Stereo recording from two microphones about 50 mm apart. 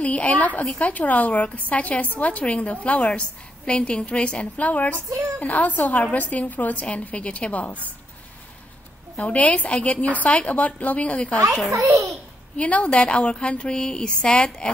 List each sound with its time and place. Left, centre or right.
0.0 s a woman's voice: left
9.1 s a woman's voice: left
12.5 s a woman's voice: left